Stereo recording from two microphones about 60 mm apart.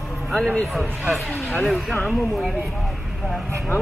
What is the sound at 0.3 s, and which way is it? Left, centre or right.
Speech, centre.